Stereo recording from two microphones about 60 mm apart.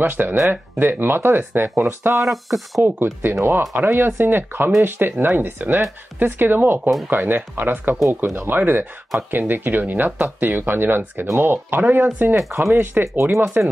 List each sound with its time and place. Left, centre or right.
0.0 s speech: right
2.2 s speech: centre
2.8 s speech: right
12.4 s speech: right
12.7 s speech: right